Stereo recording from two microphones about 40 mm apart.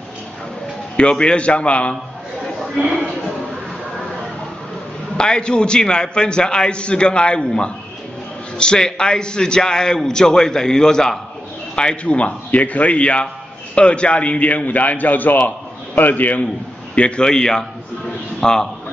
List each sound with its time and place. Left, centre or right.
0.9 s a man's voice: left
5.1 s a man's voice: left
16.9 s a man's voice: left
17.3 s a man's voice: centre